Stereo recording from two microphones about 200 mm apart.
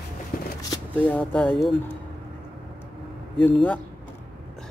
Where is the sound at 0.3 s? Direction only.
45° left (ahead or behind).